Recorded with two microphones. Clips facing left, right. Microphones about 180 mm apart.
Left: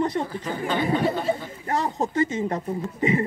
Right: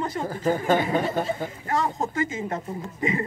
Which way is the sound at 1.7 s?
35° left (ahead or behind).